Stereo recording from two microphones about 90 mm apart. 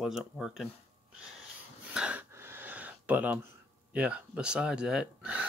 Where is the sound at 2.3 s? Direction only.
25° right (ahead or behind).